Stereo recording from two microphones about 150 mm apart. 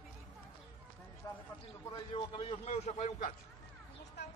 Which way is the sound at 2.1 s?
35° left (ahead or behind).